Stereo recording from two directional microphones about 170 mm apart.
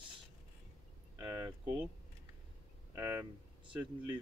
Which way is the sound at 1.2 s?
20° right (ahead or behind).